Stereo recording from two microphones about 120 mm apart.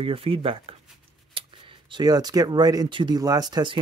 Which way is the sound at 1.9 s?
35° right (ahead or behind).